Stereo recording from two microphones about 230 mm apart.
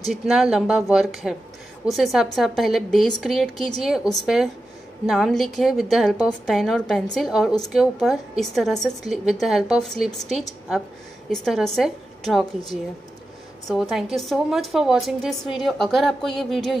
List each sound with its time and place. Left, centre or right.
0.1 s a woman's voice: centre